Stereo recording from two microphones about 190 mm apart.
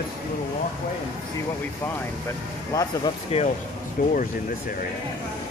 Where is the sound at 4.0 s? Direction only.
45° left (ahead or behind).